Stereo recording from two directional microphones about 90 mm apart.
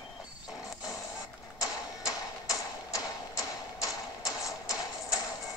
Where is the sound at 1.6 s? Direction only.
40° left (ahead or behind).